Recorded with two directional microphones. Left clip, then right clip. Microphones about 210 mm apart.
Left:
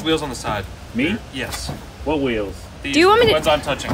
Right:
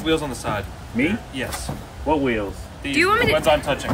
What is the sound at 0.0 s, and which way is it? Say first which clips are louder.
Speech: left 1 dB; 5° left (ahead or behind).